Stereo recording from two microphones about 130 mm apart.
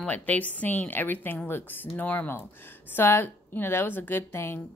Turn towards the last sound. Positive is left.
turn(degrees=20)  # may be behind; listen again after turning